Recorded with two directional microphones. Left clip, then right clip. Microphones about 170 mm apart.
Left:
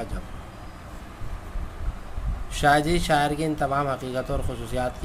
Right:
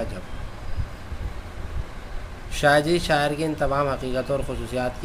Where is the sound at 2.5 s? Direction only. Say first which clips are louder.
Right 2 dB; 15° left (ahead or behind).